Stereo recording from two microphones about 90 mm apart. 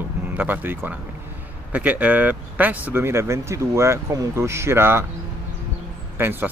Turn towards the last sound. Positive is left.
turn(degrees=-20)  # may be behind; listen again after turning